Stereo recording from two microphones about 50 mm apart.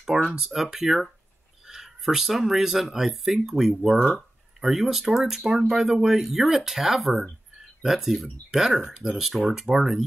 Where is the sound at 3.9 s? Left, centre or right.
Left.